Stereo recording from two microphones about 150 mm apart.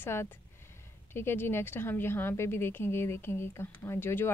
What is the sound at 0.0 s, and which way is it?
A woman's voice, 15° left (ahead or behind).